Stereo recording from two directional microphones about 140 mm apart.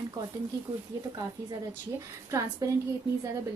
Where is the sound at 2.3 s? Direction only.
20° right (ahead or behind).